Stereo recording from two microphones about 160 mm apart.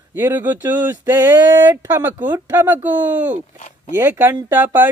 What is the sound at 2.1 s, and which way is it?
Mantra, 15° right (ahead or behind).